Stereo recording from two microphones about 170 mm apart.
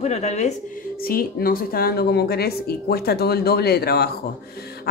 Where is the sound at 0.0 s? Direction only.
40° left (ahead or behind).